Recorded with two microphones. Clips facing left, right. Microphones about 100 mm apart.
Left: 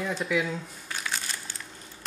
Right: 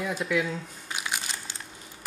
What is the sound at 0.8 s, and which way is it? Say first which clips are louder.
Crumpling: right 1 dB; 15° right (ahead or behind).